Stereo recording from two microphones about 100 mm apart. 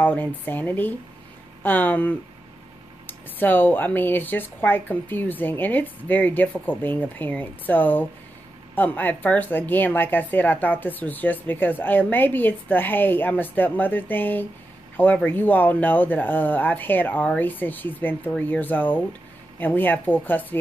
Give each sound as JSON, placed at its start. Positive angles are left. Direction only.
{"t": 0.0, "sound": "speech", "side_deg": 20}